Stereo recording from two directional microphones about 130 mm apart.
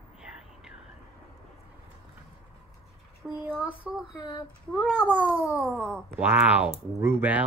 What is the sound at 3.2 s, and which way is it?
A child's voice, 5° left (ahead or behind).